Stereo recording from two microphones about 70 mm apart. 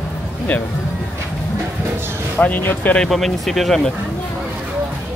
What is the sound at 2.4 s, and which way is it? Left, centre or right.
Speech, left.